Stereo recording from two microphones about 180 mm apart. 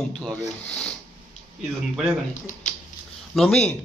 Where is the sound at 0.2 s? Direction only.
5° left (ahead or behind).